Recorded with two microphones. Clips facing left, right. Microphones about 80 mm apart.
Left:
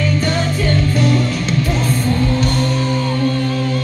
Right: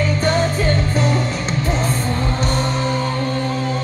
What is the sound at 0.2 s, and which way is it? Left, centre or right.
Music, right.